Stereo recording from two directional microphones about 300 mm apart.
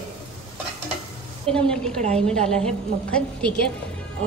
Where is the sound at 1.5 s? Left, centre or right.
Centre.